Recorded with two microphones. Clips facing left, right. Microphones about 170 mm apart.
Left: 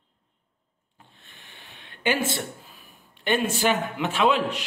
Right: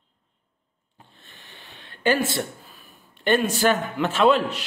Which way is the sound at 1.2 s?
40° right (ahead or behind).